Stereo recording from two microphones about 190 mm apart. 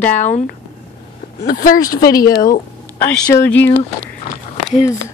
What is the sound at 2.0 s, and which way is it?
Speech, 20° left (ahead or behind).